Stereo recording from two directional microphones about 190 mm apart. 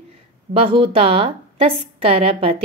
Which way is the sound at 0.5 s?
30° right (ahead or behind).